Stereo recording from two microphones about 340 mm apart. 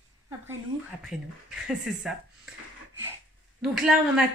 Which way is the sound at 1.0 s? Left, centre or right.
Centre.